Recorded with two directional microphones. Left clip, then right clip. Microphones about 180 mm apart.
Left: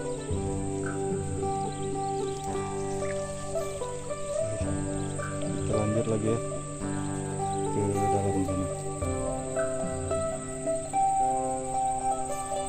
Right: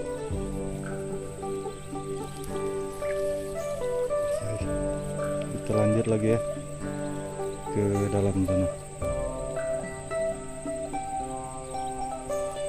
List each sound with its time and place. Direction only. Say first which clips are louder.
5.8 s music: right 5 dB; 35° right (ahead or behind)